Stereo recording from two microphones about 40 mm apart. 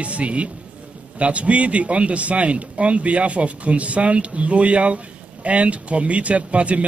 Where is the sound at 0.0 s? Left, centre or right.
Right.